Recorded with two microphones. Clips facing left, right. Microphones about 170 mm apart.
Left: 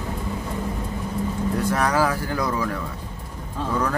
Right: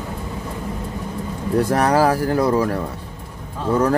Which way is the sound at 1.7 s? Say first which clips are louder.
Right 6 dB; 35° right (ahead or behind).